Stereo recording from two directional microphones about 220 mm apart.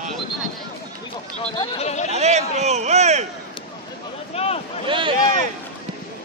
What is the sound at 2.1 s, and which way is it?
A man's voice, 30° right (ahead or behind).